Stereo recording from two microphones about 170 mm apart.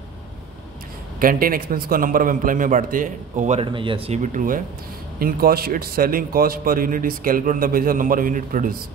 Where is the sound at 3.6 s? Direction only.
30° right (ahead or behind); by 8.8 s 55° right (ahead or behind).